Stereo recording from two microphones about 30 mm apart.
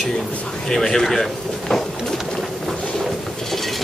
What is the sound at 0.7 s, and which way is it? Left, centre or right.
A man's voice, centre.